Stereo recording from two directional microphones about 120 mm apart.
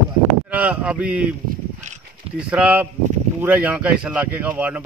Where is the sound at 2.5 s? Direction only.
10° right (ahead or behind).